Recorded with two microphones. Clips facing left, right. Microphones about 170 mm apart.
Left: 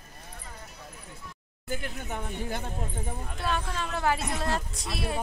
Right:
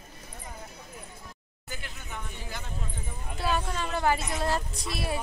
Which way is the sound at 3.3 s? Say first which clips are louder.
Right 3 dB; 5° right (ahead or behind).